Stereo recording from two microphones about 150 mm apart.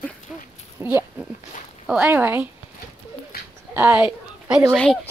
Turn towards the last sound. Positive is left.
turn(degrees=0)  # may be behind; listen again after turning